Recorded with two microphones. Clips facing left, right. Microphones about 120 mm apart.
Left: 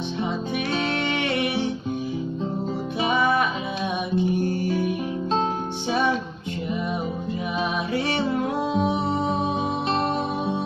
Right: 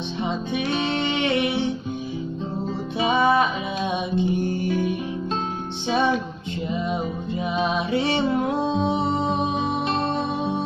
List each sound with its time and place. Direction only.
0.9 s music: 20° right (ahead or behind)
3.0 s music: 25° right (ahead or behind)
7.5 s music: 25° right (ahead or behind)